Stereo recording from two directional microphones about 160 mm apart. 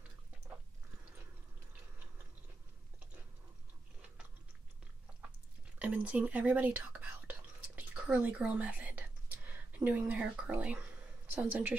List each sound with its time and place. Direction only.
5.8 s whispering: 10° right (ahead or behind)
9.7 s speech: 10° right (ahead or behind)